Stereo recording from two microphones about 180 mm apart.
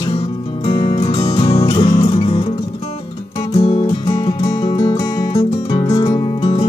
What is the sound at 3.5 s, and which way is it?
Music, 30° left (ahead or behind).